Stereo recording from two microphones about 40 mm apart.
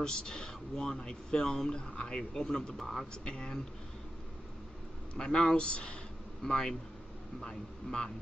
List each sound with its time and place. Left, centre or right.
0.0 s speech: centre
2.8 s a man's voice: centre
3.3 s speech: left
5.1 s speech: centre
6.4 s speech: centre